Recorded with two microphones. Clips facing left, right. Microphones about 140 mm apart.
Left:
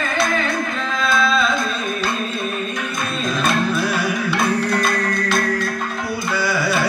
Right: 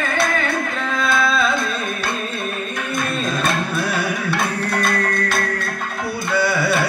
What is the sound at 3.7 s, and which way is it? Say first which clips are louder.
Music: left 1 dB; 60° right (ahead or behind).